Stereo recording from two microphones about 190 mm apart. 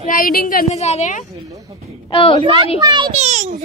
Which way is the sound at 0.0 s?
45° left (ahead or behind).